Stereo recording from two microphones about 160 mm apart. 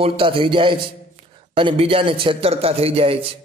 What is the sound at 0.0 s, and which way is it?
A man's voice, 35° right (ahead or behind).